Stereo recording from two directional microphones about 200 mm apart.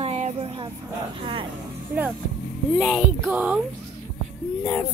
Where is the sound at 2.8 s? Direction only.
Centre (ahead or behind).